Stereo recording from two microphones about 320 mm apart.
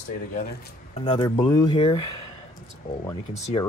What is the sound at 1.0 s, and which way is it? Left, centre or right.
Speech, centre.